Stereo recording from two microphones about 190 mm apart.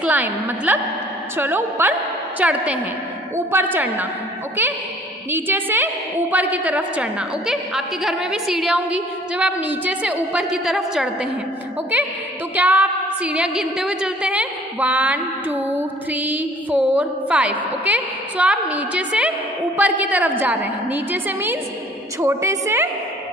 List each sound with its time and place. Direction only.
0.0 s a woman's voice: 10° right (ahead or behind)
5.3 s a woman's voice: 10° right (ahead or behind)
12.5 s a woman's voice: 10° right (ahead or behind)